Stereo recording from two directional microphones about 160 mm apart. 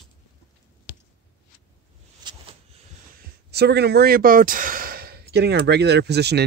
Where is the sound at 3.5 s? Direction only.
90° right.